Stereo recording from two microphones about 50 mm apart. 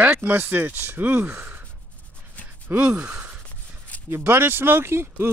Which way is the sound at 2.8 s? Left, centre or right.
Right.